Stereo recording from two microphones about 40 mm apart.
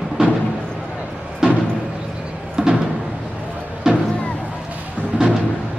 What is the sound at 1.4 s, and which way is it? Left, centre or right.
Music, centre.